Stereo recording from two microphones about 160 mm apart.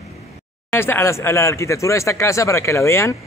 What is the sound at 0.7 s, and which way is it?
Speech, 15° left (ahead or behind).